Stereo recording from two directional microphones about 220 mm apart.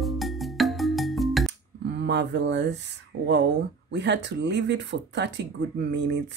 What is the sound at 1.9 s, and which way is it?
Speech, 50° right (ahead or behind).